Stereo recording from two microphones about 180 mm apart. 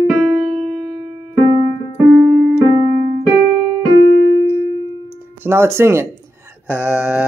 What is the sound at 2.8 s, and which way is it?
Keyboard, 35° left (ahead or behind).